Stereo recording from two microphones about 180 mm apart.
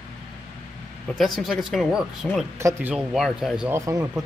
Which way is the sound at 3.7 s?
15° right (ahead or behind).